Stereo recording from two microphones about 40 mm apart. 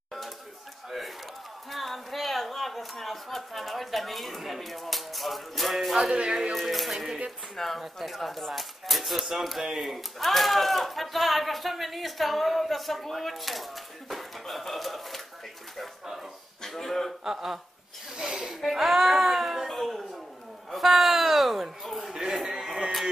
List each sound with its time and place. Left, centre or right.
0.8 s a sound: centre
1.7 s speech: centre
7.5 s speech: centre
9.7 s speech: centre
9.9 s speech: centre
16.6 s speech: centre
17.2 s speech: centre
18.1 s snort: centre
18.6 s a sound: centre
19.7 s a sound: centre
20.7 s a man's voice: centre